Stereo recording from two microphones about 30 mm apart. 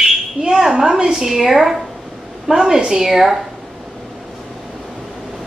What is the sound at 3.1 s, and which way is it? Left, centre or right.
Speech, centre.